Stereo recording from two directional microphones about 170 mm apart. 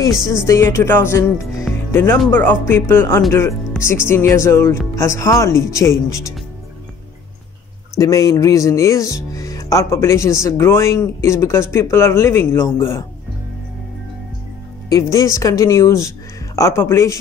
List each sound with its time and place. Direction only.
0.3 s speech: 15° left (ahead or behind)
8.0 s speech: 20° left (ahead or behind)
14.9 s speech: 20° left (ahead or behind)